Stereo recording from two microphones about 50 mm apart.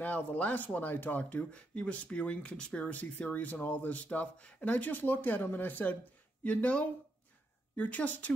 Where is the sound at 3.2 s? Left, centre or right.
Left.